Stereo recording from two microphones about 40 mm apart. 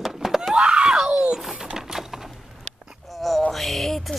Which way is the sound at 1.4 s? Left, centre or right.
Centre.